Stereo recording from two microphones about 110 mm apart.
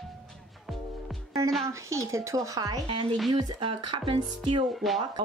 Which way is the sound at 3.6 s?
50° right (ahead or behind).